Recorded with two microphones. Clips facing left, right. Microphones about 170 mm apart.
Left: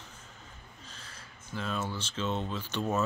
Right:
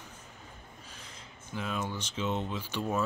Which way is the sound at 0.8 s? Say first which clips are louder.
Right 1 dB; 15° right (ahead or behind).